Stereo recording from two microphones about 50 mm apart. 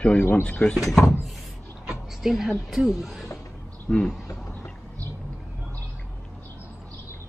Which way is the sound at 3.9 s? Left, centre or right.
Centre.